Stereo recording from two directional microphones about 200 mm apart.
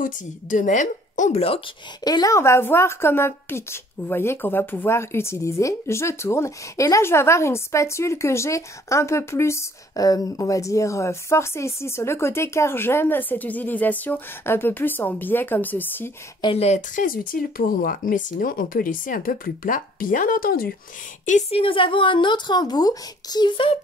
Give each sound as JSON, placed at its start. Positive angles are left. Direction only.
{"t": 0.0, "sound": "a woman's voice", "side_deg": 40}
{"t": 2.0, "sound": "a woman's voice", "side_deg": 20}
{"t": 16.3, "sound": "speech", "side_deg": 25}
{"t": 21.3, "sound": "a woman's voice", "side_deg": 35}